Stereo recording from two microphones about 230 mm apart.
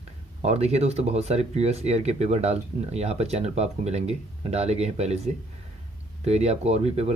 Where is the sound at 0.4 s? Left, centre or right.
Right.